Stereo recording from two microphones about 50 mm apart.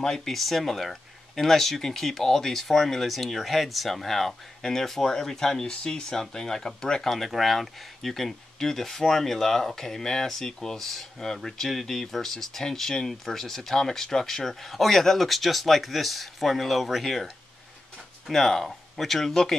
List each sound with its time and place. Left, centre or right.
0.0 s speech: centre